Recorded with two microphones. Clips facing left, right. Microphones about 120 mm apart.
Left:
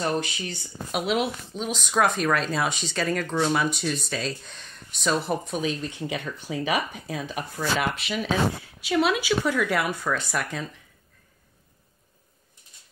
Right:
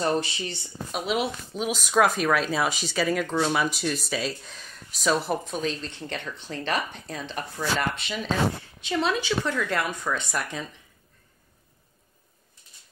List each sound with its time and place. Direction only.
0.1 s speech: 30° right (ahead or behind)
0.6 s speech: centre (ahead or behind)